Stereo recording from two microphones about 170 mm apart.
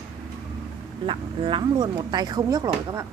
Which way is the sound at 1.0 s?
30° right (ahead or behind).